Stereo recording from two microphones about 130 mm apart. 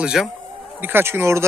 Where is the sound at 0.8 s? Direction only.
15° right (ahead or behind).